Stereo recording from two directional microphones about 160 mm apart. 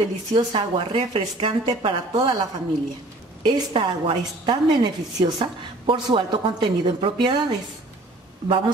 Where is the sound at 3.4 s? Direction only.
30° right (ahead or behind).